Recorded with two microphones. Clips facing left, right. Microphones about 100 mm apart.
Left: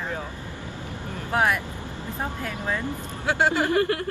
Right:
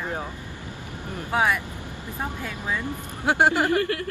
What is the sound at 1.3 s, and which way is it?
Speech, 10° right (ahead or behind).